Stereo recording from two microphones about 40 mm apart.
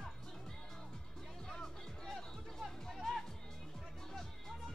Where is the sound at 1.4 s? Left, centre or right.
Centre.